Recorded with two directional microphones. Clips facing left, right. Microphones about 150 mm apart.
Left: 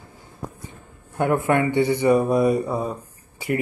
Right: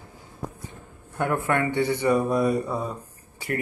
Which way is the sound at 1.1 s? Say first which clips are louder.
Left 4 dB; 15° left (ahead or behind).